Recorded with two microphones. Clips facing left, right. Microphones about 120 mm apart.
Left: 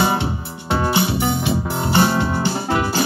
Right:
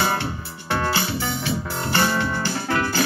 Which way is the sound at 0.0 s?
20° left (ahead or behind).